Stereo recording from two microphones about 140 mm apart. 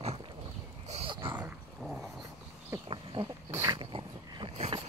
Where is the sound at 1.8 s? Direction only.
Centre (ahead or behind).